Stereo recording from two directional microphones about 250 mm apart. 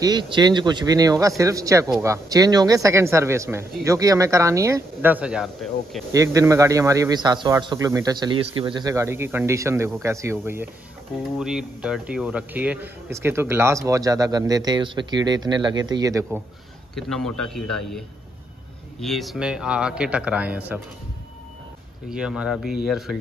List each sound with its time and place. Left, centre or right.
0.0 s speech: centre
6.1 s speech: centre
16.9 s a man's voice: centre
22.1 s a man's voice: centre